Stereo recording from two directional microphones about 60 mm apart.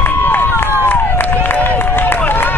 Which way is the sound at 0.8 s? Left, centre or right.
Left.